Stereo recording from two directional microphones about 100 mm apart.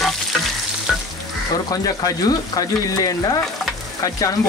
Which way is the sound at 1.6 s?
40° left (ahead or behind).